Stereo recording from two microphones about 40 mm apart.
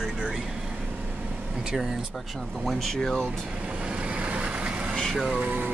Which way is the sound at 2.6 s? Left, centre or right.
Centre.